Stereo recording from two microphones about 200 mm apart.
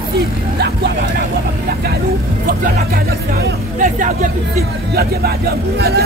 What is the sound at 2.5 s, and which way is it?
Speech, 50° right (ahead or behind).